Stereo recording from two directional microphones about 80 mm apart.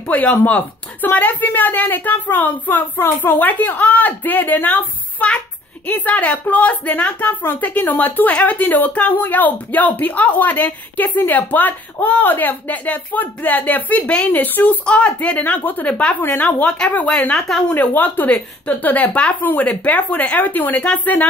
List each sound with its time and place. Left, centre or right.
0.0 s speech: centre
16.2 s speech: left
16.5 s speech: centre
17.6 s speech: left